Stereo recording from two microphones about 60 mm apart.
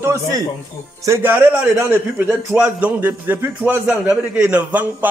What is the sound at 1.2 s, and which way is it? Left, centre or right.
A man's voice, right.